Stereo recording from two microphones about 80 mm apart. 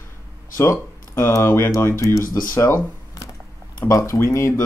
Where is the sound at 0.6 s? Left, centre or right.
Left.